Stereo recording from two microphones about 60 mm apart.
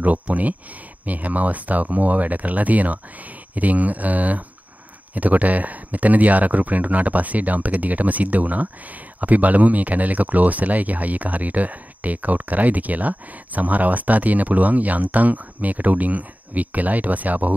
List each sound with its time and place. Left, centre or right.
0.0 s speech: right